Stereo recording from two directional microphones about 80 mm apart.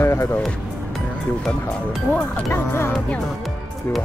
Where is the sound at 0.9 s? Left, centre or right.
Centre.